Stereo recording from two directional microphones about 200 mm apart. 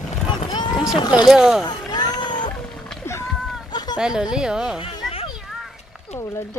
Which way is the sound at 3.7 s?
20° left (ahead or behind).